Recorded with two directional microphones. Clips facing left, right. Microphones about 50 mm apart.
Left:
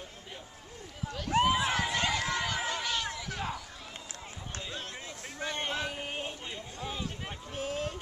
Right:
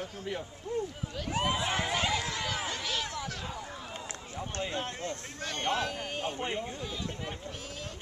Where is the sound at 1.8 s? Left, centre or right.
Centre.